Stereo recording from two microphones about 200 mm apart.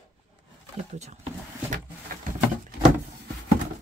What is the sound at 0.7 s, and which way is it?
Speech, 35° right (ahead or behind).